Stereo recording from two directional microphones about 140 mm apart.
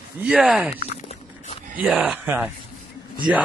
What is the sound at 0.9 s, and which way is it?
Walk, 50° left (ahead or behind).